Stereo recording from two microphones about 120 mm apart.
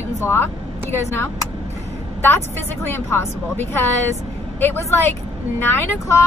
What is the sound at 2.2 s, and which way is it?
A woman's voice, 20° left (ahead or behind).